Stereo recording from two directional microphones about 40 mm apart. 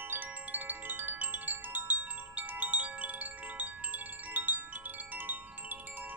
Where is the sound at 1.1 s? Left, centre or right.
Right.